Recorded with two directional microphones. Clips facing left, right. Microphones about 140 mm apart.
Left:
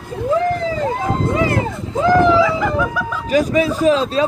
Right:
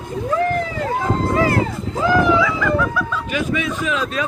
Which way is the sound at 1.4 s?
20° left (ahead or behind).